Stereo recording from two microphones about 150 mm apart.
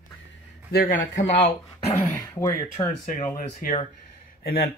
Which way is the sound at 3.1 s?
65° left (ahead or behind).